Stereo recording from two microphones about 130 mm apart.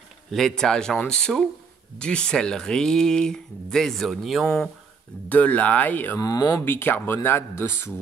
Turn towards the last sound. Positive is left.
turn(degrees=20)  # may be behind; listen again after turning